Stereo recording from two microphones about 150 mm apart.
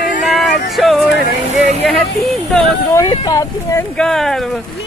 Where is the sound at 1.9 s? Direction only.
5° left (ahead or behind).